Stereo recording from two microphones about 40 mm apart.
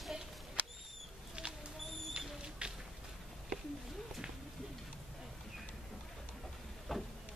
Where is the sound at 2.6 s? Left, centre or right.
Right.